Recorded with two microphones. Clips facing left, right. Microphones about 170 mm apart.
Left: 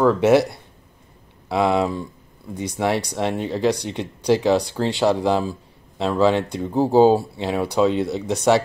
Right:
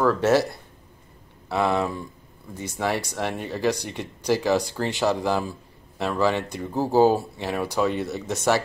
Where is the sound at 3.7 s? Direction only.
65° left (ahead or behind).